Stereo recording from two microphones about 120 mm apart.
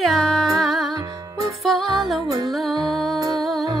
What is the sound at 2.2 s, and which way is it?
Music, 30° right (ahead or behind).